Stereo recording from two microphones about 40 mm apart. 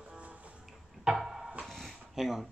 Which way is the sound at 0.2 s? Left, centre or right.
Right.